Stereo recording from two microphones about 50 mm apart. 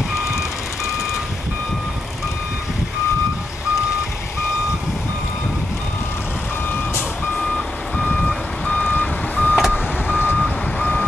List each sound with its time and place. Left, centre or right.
7.3 s reversing beeps: centre
8.8 s reversing beeps: left
9.6 s vehicle: centre
10.3 s reversing beeps: centre